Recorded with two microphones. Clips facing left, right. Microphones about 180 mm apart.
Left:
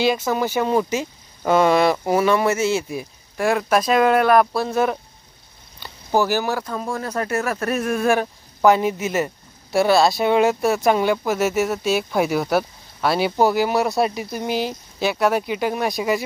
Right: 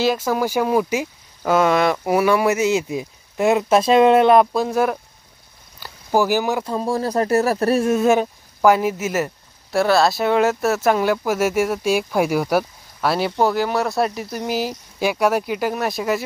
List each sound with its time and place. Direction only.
0.0 s speech: 5° right (ahead or behind)
2.1 s speech: 10° right (ahead or behind)
6.6 s speech: 30° right (ahead or behind)
8.5 s speech: 5° right (ahead or behind)